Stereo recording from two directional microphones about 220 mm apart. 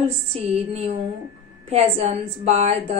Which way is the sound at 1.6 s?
25° right (ahead or behind).